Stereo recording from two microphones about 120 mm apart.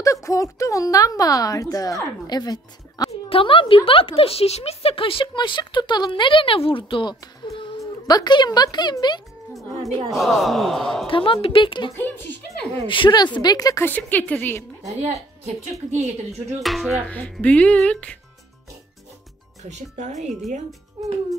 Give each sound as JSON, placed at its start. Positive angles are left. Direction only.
{"t": 0.0, "sound": "speech", "side_deg": 25}
{"t": 3.1, "sound": "speech", "side_deg": 50}
{"t": 10.1, "sound": "a man's voice", "side_deg": 0}
{"t": 11.1, "sound": "speech", "side_deg": 45}
{"t": 13.8, "sound": "speech", "side_deg": 15}
{"t": 15.9, "sound": "speech", "side_deg": -65}
{"t": 16.6, "sound": "a man's voice", "side_deg": 0}
{"t": 17.1, "sound": "speech", "side_deg": 10}
{"t": 19.6, "sound": "speech", "side_deg": -70}